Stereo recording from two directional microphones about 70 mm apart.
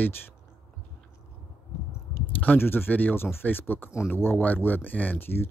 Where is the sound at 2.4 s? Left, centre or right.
Left.